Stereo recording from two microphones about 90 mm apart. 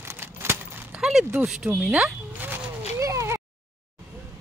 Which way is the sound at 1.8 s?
15° right (ahead or behind).